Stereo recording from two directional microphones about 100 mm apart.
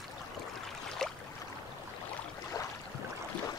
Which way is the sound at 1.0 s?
5° left (ahead or behind).